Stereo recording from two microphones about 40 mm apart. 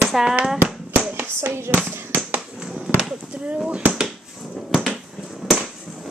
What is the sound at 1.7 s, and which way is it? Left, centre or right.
Speech, right.